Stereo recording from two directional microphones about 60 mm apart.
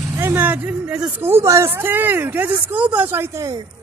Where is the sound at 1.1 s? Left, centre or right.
Right.